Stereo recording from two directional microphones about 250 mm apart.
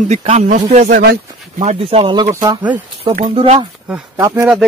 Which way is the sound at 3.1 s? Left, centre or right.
Right.